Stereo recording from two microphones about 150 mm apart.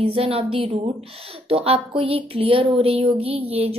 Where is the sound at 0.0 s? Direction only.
40° right (ahead or behind).